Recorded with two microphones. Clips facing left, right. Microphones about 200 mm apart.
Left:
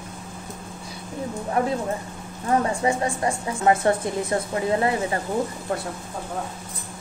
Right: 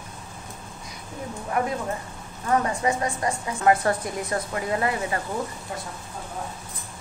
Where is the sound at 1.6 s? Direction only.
30° left (ahead or behind).